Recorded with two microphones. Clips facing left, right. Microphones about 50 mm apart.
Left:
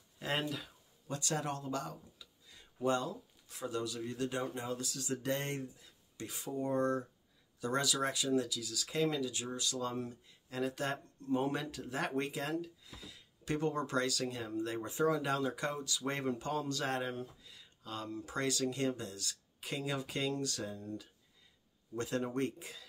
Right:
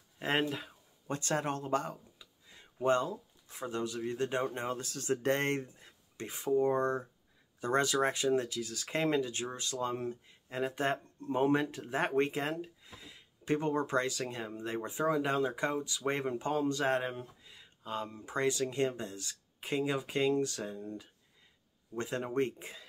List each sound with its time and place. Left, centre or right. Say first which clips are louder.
0.2 s speech: right 5 dB; right
2.1 s speech: right 1 dB; right